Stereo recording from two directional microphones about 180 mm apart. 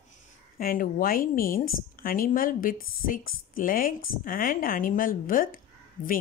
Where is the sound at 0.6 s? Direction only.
50° left (ahead or behind).